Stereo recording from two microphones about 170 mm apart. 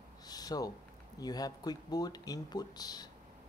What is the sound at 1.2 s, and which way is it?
Mantra, 20° left (ahead or behind).